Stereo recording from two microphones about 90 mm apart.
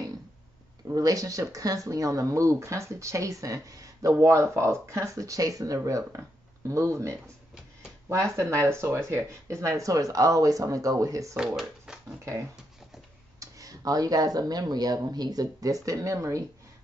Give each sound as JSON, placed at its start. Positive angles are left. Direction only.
{"t": 0.9, "sound": "speech", "side_deg": -40}
{"t": 11.3, "sound": "speech", "side_deg": -5}
{"t": 13.4, "sound": "speech", "side_deg": -40}